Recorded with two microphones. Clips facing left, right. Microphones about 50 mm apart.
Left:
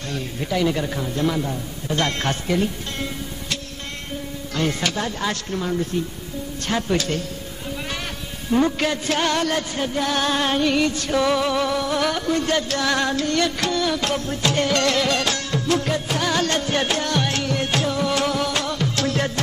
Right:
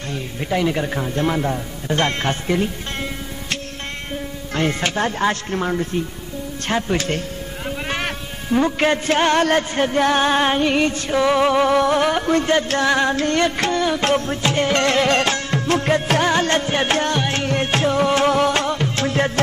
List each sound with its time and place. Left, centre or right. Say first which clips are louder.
0.1 s a man's voice: right 2 dB; right
4.6 s music: right 3 dB; right
6.7 s a man's voice: right 1 dB; right
7.1 s a sound: right 2 dB; right
8.7 s music: right 5 dB; right
10.1 s a man's voice: right 4 dB; right
11.3 s music: right 5 dB; right
11.7 s music: right 7 dB; right
12.0 s music: right 4 dB; right
12.8 s a man's voice: right 4 dB; right
13.1 s music: right 3 dB; right
14.5 s music: right 2 dB; right